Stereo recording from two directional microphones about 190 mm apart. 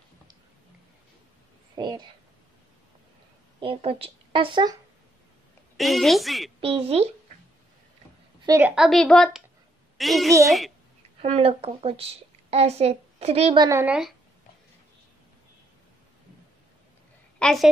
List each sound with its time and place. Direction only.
1.8 s speech: 25° right (ahead or behind)
3.5 s a woman's voice: 30° right (ahead or behind)
5.8 s a woman's voice: centre (ahead or behind)
6.6 s speech: 30° right (ahead or behind)
8.5 s a woman's voice: 10° right (ahead or behind)
11.1 s a woman's voice: 30° right (ahead or behind)
13.7 s a woman's voice: 10° right (ahead or behind)
17.4 s a woman's voice: 5° left (ahead or behind)